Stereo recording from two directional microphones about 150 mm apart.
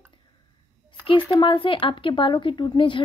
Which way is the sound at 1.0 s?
35° left (ahead or behind).